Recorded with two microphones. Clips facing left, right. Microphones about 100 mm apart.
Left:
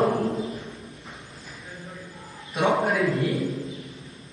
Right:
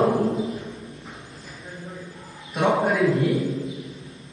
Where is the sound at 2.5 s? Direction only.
Centre (ahead or behind).